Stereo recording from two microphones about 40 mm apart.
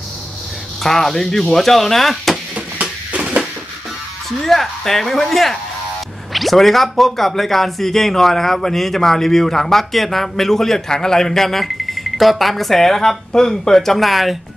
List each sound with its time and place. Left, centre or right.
0.8 s speech: centre
2.5 s a sound: right
4.4 s speech: centre